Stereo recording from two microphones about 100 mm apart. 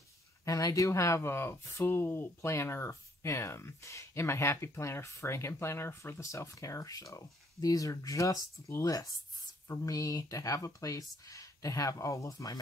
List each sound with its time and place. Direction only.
0.5 s speech: 35° left (ahead or behind)